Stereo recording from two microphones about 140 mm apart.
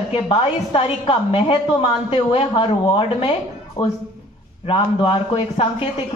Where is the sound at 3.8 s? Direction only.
30° left (ahead or behind).